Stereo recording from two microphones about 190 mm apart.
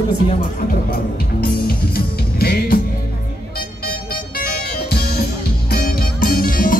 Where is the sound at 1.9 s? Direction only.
55° left (ahead or behind).